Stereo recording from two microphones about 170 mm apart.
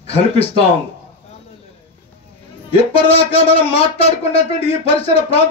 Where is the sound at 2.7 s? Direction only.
35° left (ahead or behind).